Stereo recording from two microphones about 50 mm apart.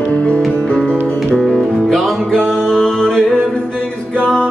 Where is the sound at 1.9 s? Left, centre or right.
Centre.